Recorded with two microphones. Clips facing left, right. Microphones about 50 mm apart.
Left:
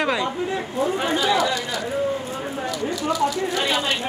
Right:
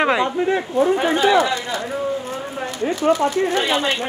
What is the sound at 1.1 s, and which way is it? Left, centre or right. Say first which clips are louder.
Speech: right 4 dB; right.